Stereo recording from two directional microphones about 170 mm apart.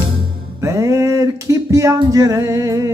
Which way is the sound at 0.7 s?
15° right (ahead or behind).